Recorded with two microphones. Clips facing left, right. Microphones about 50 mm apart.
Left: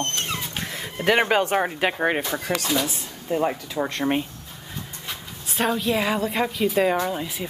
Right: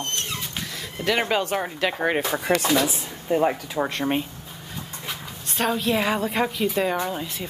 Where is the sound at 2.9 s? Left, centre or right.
Centre.